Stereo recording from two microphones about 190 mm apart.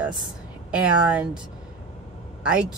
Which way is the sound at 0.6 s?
5° right (ahead or behind).